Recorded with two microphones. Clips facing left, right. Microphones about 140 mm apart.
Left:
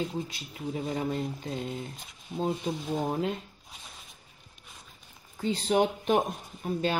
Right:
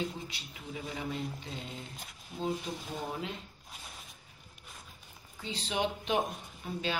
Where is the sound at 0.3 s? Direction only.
40° left (ahead or behind).